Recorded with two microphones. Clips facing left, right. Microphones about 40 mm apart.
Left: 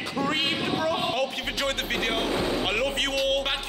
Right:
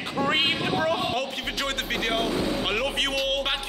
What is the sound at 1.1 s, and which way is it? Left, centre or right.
Music, centre.